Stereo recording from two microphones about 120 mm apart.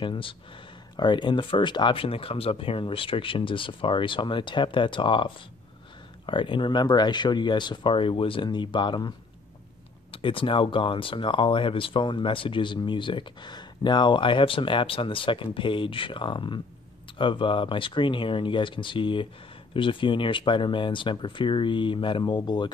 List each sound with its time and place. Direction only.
0.0 s speech: 45° left (ahead or behind)
10.1 s speech: 45° left (ahead or behind)